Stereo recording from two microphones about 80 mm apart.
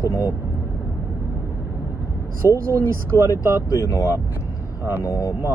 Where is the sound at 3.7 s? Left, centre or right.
Left.